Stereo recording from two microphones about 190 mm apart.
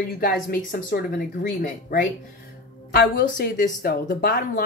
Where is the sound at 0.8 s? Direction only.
60° left (ahead or behind).